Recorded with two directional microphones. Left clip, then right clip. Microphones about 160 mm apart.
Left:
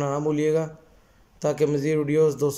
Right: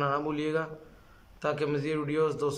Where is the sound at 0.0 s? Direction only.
20° left (ahead or behind).